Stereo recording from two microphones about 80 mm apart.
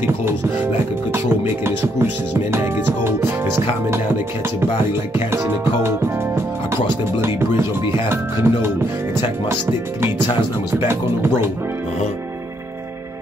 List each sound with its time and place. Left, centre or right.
1.1 s music: right
5.3 s speech: right
7.2 s music: right